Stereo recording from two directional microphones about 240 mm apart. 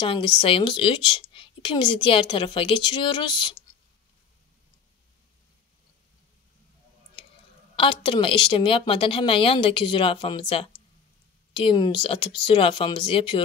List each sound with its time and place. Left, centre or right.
0.0 s a woman's voice: left
7.7 s a woman's voice: left